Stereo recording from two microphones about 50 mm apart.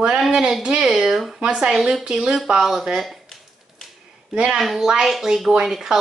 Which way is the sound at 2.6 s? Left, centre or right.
Centre.